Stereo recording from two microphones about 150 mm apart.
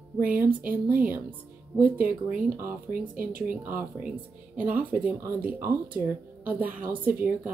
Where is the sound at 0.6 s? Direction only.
10° right (ahead or behind).